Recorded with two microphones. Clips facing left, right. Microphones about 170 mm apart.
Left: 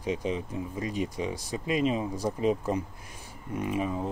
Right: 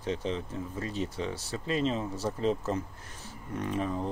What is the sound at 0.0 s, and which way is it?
Speech, 10° left (ahead or behind).